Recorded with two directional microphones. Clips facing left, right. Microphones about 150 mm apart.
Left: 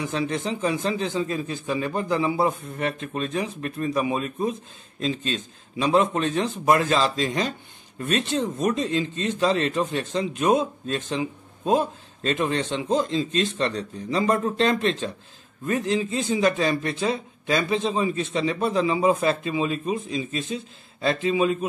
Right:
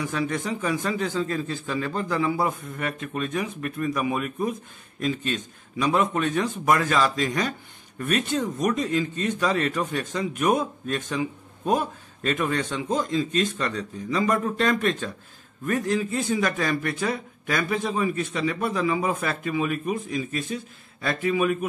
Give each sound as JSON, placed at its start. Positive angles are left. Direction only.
{"t": 0.1, "sound": "speech", "side_deg": 25}